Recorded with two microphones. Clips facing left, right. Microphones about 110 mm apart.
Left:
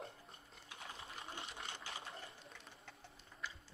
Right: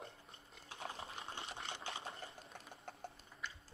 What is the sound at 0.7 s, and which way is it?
Sewing machine, 30° right (ahead or behind).